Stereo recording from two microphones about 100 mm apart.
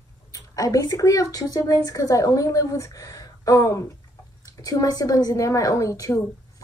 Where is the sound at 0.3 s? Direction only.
35° left (ahead or behind).